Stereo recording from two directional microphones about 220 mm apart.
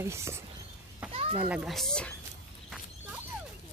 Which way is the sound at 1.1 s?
25° right (ahead or behind).